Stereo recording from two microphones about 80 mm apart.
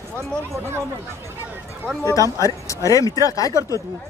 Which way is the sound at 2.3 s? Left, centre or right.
Left.